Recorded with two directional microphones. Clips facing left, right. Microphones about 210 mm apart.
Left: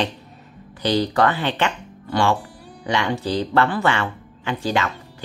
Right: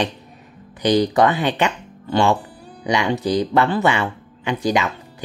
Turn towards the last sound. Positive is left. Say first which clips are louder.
# right 3 dB
turn(degrees=-15)  # may be behind; listen again after turning